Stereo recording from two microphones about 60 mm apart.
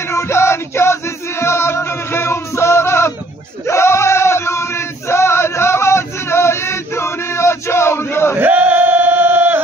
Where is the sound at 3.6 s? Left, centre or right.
Left.